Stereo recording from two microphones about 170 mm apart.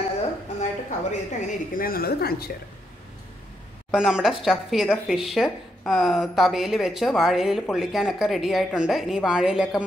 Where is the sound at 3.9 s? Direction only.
5° right (ahead or behind).